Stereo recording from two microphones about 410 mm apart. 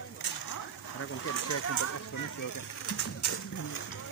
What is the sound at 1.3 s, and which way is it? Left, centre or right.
Speech, left.